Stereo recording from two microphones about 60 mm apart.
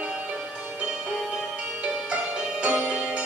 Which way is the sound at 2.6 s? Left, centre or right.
Right.